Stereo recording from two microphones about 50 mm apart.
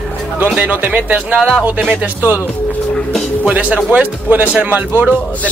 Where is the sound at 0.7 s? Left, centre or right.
Right.